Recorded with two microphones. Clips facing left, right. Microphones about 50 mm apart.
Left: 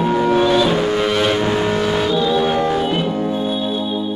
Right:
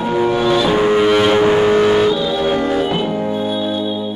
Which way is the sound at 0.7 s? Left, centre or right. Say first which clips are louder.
Right 4 dB; centre.